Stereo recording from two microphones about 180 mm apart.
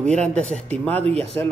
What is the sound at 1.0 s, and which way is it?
Speech, 35° right (ahead or behind).